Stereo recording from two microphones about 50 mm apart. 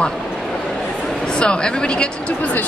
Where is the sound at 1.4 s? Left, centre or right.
Centre.